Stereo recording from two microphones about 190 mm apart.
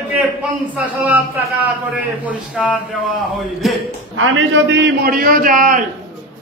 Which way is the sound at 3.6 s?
Centre (ahead or behind).